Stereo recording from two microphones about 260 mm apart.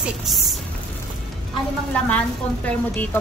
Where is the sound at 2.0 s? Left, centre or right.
Centre.